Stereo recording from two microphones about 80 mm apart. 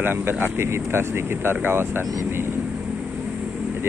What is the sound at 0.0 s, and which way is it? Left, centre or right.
Speech, right.